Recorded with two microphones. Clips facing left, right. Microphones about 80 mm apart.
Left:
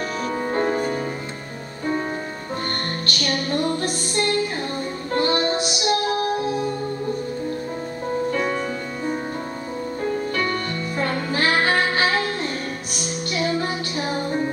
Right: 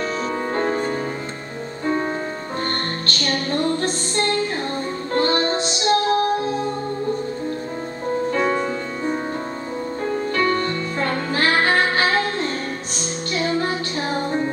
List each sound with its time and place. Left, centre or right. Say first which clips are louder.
0.5 s music: left 1 dB; right
3.2 s music: right 1 dB; right
8.3 s music: right 3 dB; right
10.3 s music: right 4 dB; right